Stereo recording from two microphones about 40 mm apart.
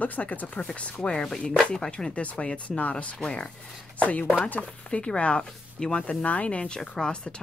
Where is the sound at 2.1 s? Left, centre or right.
Left.